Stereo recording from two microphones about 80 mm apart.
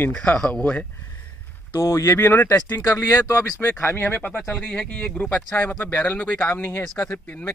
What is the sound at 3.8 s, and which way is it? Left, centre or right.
Speech, left.